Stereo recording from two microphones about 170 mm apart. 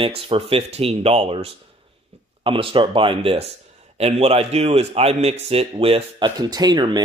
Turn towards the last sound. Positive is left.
turn(degrees=-25)  # may be behind; listen again after turning